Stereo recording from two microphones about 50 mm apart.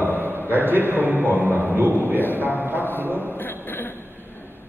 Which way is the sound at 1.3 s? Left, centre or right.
Left.